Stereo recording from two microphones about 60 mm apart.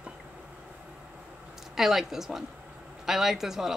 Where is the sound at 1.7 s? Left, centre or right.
Centre.